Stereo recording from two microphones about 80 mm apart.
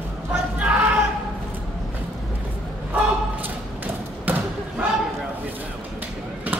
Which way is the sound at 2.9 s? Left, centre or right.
Right.